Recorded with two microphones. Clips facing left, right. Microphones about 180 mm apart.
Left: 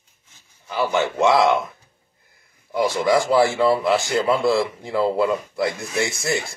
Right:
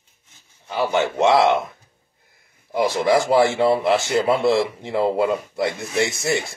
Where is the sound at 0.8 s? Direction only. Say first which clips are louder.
Right 1 dB; 20° right (ahead or behind).